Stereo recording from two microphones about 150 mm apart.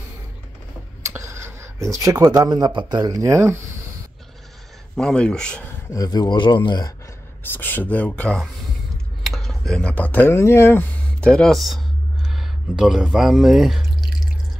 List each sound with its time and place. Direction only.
1.0 s speech: 20° right (ahead or behind)
4.9 s speech: 5° left (ahead or behind)
5.9 s speech: 25° left (ahead or behind)
7.5 s speech: 15° left (ahead or behind)